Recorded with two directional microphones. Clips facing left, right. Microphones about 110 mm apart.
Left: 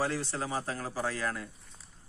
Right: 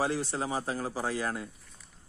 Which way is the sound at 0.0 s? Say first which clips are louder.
Right 2 dB; 15° right (ahead or behind).